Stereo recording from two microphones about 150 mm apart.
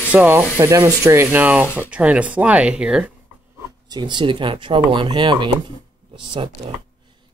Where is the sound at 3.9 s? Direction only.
30° right (ahead or behind).